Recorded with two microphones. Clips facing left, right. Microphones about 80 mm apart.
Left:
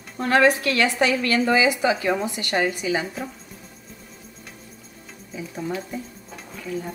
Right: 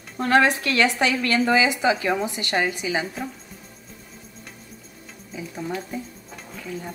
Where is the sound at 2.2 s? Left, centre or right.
Right.